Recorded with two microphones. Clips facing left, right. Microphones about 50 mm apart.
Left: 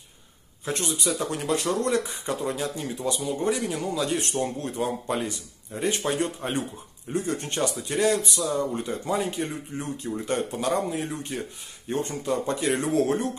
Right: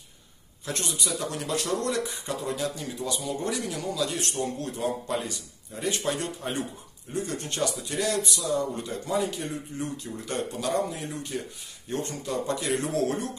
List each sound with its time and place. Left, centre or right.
0.7 s speech: left